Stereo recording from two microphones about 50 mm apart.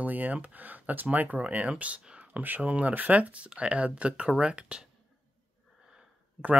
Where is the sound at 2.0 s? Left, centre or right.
Right.